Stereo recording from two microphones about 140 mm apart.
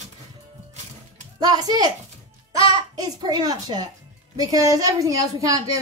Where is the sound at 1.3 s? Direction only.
30° right (ahead or behind).